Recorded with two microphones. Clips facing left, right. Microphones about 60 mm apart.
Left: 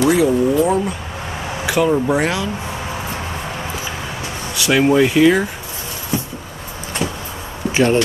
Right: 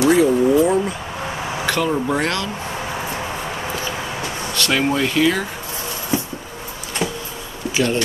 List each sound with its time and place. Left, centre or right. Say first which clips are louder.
0.0 s a sound: even; centre
1.7 s speech: left 5 dB; centre
4.6 s speech: left 6 dB; centre
7.0 s vehicle: even; centre
7.7 s speech: left 5 dB; left